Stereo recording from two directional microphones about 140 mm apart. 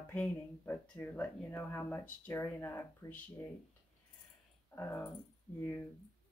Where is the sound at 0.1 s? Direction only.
10° left (ahead or behind).